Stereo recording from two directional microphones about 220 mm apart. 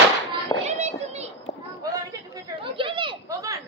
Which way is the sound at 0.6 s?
30° right (ahead or behind).